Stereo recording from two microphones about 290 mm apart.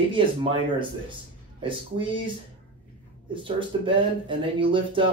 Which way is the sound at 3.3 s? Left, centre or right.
Centre.